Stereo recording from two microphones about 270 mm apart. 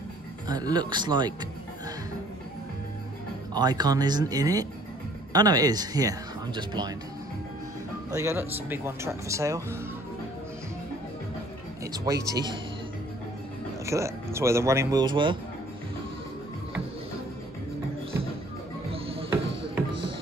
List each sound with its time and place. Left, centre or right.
0.5 s speech: centre
3.5 s speech: centre
8.1 s speech: centre
11.8 s speech: centre
13.8 s speech: centre
18.9 s music: right
19.4 s music: right